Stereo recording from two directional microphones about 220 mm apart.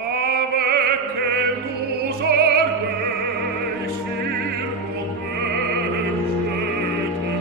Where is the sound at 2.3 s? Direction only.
45° right (ahead or behind).